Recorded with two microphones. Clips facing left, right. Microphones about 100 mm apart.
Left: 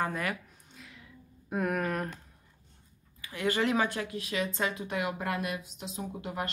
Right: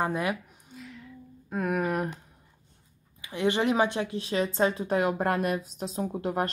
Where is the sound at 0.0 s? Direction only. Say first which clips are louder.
Right 4 dB; 20° right (ahead or behind).